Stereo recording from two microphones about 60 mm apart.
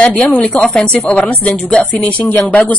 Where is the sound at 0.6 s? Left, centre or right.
Centre.